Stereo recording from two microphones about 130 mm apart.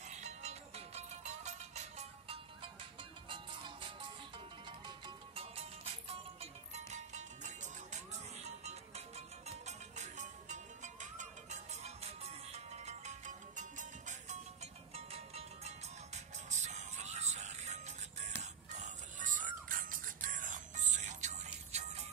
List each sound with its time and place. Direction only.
0.2 s music: 55° right (ahead or behind)
3.3 s music: 40° right (ahead or behind)
6.9 s music: 65° right (ahead or behind)